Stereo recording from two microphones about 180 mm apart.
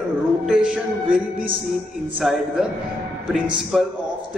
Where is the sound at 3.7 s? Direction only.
Centre (ahead or behind).